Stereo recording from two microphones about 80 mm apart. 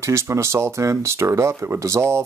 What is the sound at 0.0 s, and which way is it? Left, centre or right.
Speech, right.